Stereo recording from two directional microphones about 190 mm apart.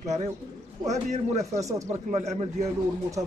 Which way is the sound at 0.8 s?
35° right (ahead or behind).